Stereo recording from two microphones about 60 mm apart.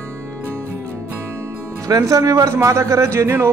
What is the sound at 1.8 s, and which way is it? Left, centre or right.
Speech, right.